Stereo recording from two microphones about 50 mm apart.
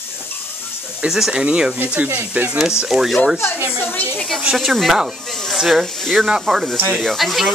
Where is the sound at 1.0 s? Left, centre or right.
Centre.